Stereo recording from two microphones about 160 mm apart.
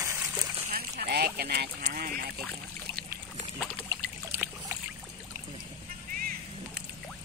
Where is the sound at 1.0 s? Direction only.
80° right.